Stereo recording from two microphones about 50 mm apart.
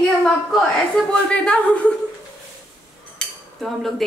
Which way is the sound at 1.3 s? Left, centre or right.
Left.